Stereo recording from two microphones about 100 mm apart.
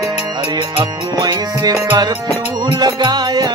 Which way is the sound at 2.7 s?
40° right (ahead or behind).